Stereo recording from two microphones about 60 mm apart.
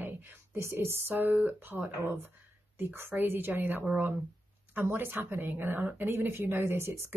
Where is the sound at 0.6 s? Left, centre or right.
Right.